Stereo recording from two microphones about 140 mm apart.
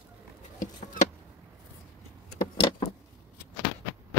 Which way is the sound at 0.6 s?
60° left (ahead or behind).